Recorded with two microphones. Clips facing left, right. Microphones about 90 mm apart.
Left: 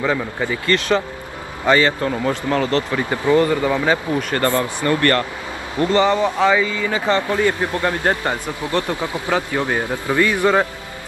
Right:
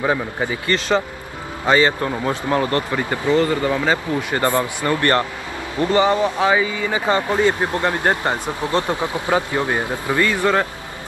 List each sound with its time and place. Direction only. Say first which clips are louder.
0.0 s speech: even; 20° right (ahead or behind)
3.1 s speech: left 2 dB; 15° left (ahead or behind)
4.2 s speech: even; 15° right (ahead or behind)
10.1 s speech: left 2 dB; 15° left (ahead or behind)